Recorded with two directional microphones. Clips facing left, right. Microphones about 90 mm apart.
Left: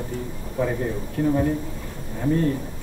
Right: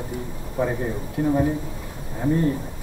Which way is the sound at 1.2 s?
10° right (ahead or behind).